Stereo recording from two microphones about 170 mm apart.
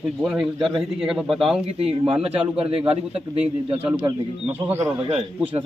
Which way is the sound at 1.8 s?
35° right (ahead or behind).